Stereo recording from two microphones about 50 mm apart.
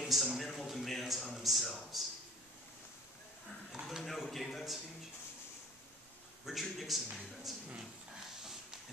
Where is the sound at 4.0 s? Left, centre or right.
Centre.